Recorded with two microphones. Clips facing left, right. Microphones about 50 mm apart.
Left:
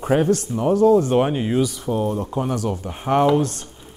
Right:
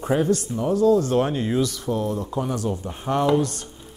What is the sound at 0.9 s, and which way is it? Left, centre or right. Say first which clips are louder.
Speech: left 3 dB; left.